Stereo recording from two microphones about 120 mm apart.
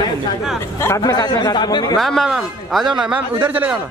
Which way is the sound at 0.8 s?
30° left (ahead or behind).